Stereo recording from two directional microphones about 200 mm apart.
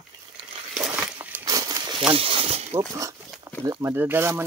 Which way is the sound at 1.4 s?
20° right (ahead or behind).